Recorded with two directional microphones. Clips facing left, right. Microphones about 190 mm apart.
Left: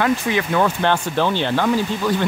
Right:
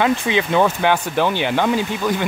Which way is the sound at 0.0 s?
20° right (ahead or behind).